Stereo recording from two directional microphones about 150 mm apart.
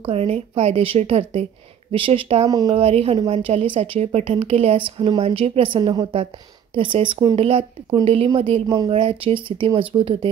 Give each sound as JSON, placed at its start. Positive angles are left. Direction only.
{"t": 0.0, "sound": "a woman's voice", "side_deg": -40}
{"t": 2.4, "sound": "a woman's voice", "side_deg": -25}
{"t": 8.6, "sound": "a woman's voice", "side_deg": -25}